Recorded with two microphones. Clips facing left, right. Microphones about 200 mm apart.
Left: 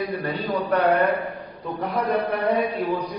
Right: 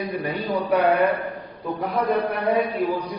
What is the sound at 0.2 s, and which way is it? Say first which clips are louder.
Speech: right 1 dB; 10° right (ahead or behind).